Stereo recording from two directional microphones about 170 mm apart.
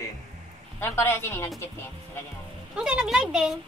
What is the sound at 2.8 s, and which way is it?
Speech, 5° right (ahead or behind).